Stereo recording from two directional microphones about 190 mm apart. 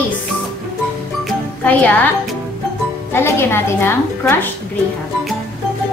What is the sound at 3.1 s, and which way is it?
A woman's voice, 10° left (ahead or behind).